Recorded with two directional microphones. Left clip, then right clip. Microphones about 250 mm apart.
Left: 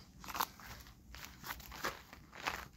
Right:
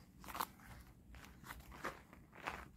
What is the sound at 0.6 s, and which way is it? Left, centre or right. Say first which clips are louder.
Walk: left 8 dB; left.